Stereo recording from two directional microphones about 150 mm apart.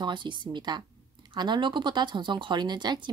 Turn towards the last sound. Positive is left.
turn(degrees=-30)  # may be behind; listen again after turning